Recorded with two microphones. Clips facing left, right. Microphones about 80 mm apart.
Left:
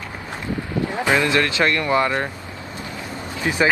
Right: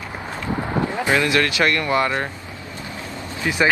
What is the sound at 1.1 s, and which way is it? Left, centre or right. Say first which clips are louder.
Speech: even; left.